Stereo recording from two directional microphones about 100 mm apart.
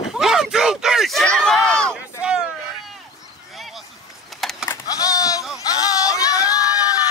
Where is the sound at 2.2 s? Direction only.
10° right (ahead or behind).